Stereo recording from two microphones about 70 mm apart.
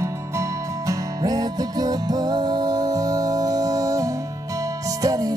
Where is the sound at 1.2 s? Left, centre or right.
Right.